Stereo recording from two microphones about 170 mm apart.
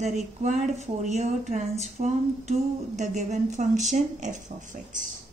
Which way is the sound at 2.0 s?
40° right (ahead or behind).